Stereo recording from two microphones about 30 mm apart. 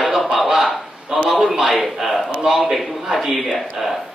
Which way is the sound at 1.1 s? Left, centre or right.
Right.